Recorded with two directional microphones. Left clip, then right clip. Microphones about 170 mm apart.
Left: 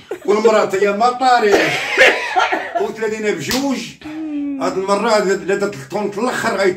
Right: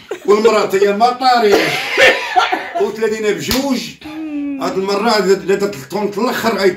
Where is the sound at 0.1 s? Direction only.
10° left (ahead or behind).